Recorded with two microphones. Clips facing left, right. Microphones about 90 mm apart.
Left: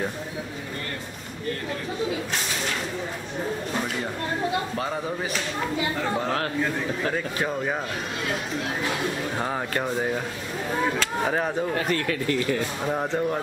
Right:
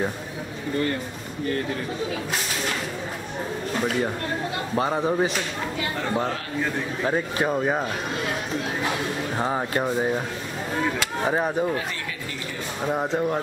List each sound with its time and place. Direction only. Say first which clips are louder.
4.7 s speech: right 6 dB; 25° right (ahead or behind)
7.1 s speech: right 7 dB; 20° right (ahead or behind)
9.4 s speech: right 5 dB; 20° right (ahead or behind)
11.7 s speech: left 4 dB; 55° left (ahead or behind)
12.8 s speech: right 4 dB; 5° right (ahead or behind)